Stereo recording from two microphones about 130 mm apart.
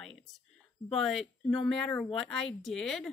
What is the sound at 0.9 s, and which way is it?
Speech, centre (ahead or behind).